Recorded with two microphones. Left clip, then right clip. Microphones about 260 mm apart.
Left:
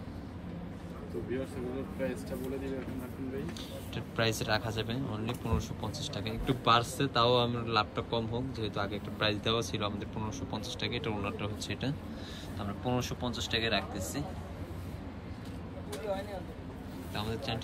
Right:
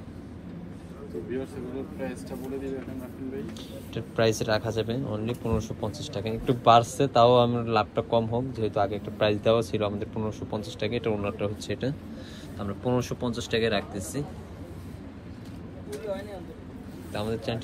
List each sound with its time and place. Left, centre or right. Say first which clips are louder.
3.9 s speech: right 7 dB; centre
17.1 s speech: right 6 dB; centre